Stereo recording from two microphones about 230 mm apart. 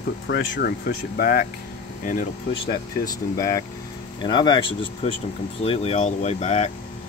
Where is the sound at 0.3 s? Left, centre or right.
Left.